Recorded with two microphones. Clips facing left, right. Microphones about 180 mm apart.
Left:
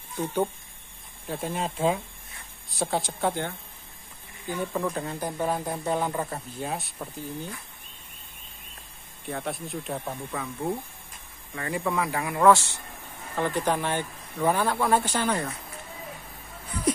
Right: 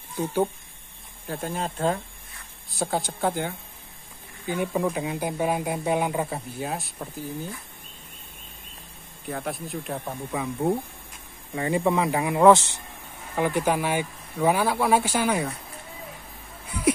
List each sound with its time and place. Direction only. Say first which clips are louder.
1.2 s speech: even; centre (ahead or behind)
4.5 s speech: right 3 dB; 15° right (ahead or behind)
9.3 s speech: right 1 dB; centre (ahead or behind)
10.3 s speech: right 6 dB; 20° right (ahead or behind)
16.6 s a sound: right 3 dB; 10° right (ahead or behind)